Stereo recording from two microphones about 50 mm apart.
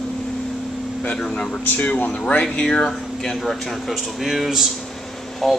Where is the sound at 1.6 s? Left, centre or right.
Left.